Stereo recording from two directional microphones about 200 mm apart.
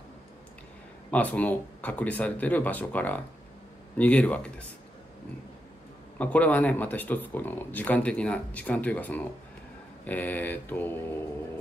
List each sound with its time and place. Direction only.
1.1 s speech: 5° left (ahead or behind)
6.1 s speech: 5° left (ahead or behind)